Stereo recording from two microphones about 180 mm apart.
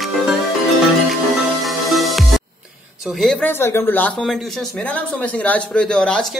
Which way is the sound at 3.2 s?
5° left (ahead or behind).